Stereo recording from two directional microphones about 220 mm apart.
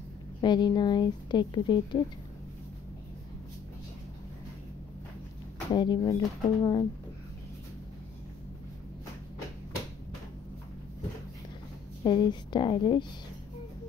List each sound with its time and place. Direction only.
0.4 s speech: 20° left (ahead or behind)
5.7 s speech: 20° left (ahead or behind)
12.0 s speech: 20° left (ahead or behind)